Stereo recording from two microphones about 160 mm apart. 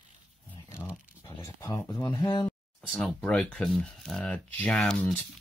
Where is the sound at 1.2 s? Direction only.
20° left (ahead or behind).